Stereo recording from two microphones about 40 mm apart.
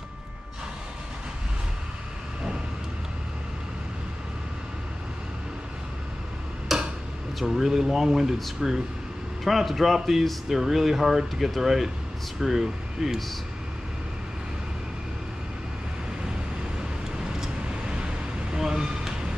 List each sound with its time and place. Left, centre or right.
6.7 s a sound: centre
7.3 s a man's voice: centre
17.4 s vehicle: right